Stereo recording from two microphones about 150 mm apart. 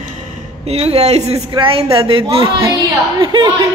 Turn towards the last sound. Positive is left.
turn(degrees=-30)  # may be behind; listen again after turning